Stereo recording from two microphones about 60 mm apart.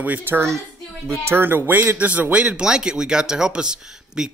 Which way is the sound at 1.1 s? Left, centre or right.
Right.